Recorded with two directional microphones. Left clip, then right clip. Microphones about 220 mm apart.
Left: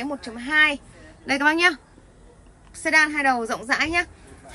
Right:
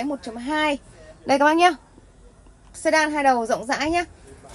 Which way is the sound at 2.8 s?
15° right (ahead or behind).